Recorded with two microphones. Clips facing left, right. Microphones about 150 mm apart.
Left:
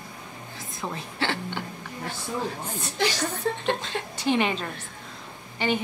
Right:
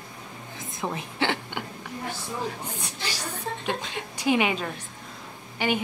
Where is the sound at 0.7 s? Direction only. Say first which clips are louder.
Right 2 dB; 15° right (ahead or behind).